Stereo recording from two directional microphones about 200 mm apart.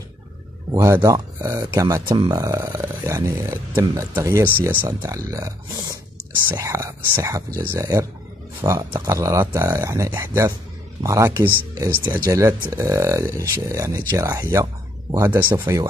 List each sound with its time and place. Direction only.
0.7 s speech: 15° right (ahead or behind)
6.5 s speech: 15° right (ahead or behind)